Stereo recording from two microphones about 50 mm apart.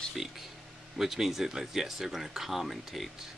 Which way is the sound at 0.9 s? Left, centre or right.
Centre.